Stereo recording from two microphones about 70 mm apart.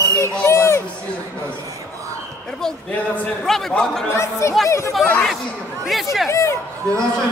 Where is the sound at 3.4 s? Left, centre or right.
Centre.